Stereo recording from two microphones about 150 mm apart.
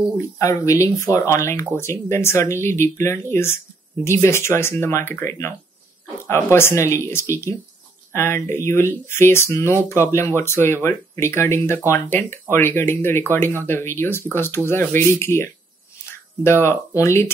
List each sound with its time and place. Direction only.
0.4 s speech: 20° left (ahead or behind)
16.6 s speech: 20° left (ahead or behind)